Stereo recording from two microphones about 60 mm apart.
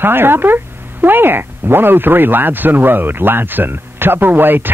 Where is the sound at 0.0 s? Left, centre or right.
Right.